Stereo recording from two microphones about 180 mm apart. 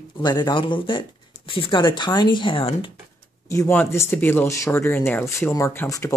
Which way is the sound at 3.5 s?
15° left (ahead or behind).